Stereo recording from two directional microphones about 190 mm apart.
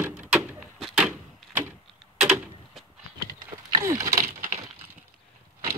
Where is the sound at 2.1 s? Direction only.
5° right (ahead or behind).